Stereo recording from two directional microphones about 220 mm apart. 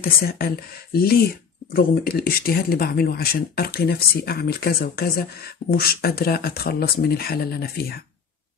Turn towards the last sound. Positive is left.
turn(degrees=45)  # may be behind; listen again after turning